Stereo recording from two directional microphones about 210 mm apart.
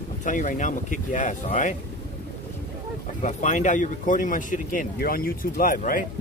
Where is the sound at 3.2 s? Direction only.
35° left (ahead or behind).